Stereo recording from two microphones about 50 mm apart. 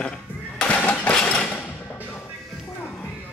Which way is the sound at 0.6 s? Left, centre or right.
Left.